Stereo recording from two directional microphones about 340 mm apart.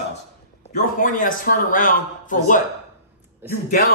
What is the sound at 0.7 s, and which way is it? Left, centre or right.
A man's voice, left.